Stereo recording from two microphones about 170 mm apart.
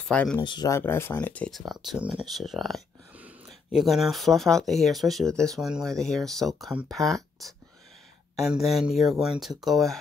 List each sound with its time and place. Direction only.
0.0 s speech: 5° left (ahead or behind)
0.4 s speech: 25° left (ahead or behind)
0.7 s speech: 15° left (ahead or behind)